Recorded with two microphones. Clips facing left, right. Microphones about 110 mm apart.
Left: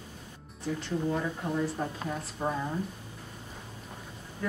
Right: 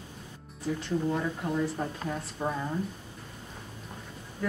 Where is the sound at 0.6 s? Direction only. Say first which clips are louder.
Right 2 dB; centre (ahead or behind).